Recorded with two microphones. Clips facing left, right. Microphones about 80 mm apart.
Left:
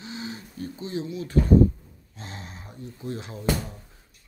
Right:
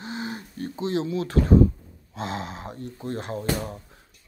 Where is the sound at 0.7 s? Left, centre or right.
Right.